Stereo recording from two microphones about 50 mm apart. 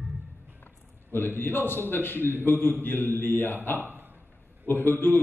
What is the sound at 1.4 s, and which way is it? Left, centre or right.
A man's voice, left.